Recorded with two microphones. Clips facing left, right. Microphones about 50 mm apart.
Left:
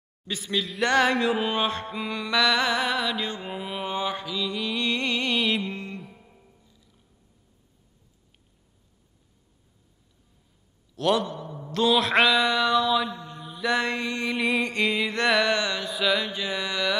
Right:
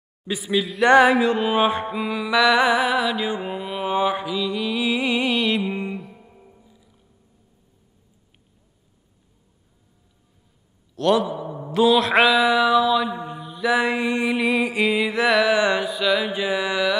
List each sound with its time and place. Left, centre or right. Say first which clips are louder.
0.3 s music: right 6 dB; centre
1.2 s mantra: right 5 dB; centre
1.6 s music: right 7 dB; centre
3.9 s music: right 9 dB; centre
4.4 s music: right 4 dB; centre
5.7 s music: right 7 dB; centre
6.4 s music: right 7 dB; centre
11.0 s a sound: right 4 dB; centre
11.8 s mantra: right 4 dB; centre
13.1 s mantra: right 8 dB; centre
13.4 s mantra: right 4 dB; centre
16.3 s music: right 7 dB; centre